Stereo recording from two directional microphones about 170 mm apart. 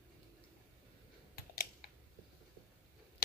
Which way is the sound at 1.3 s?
65° left (ahead or behind).